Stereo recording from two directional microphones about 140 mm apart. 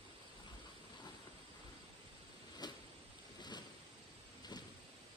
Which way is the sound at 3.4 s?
30° left (ahead or behind).